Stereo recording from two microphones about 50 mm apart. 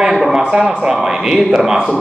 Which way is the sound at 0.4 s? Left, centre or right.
Centre.